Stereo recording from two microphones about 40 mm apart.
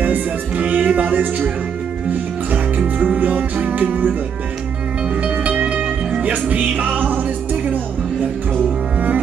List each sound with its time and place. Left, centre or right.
0.0 s music: right
2.5 s music: right
5.2 s music: right